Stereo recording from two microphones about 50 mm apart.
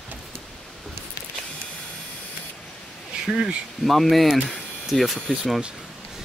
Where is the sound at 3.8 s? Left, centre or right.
Centre.